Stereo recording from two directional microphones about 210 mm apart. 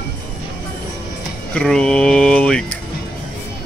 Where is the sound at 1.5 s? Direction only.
5° left (ahead or behind).